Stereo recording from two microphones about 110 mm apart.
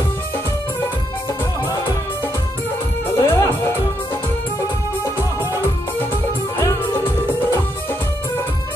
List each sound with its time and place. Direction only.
3.2 s music: 20° left (ahead or behind)